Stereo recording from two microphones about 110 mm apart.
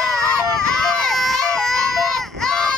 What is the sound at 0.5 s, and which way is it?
Baby cry, 5° left (ahead or behind).